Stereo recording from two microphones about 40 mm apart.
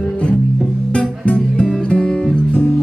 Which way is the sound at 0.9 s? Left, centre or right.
Left.